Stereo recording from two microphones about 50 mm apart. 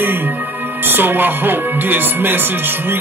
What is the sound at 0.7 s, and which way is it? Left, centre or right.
Speech, right.